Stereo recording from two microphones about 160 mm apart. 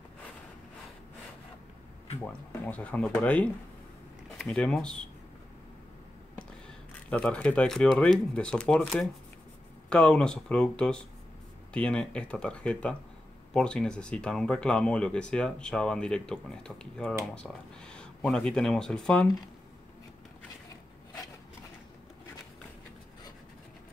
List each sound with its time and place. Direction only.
2.2 s speech: 10° left (ahead or behind)
7.1 s speech: 10° left (ahead or behind)